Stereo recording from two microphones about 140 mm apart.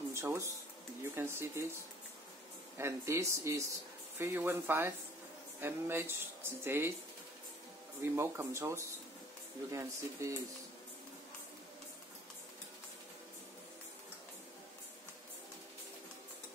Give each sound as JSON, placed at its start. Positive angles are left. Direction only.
{"t": 0.1, "sound": "speech", "side_deg": -20}
{"t": 2.8, "sound": "speech", "side_deg": -20}
{"t": 8.0, "sound": "speech", "side_deg": -15}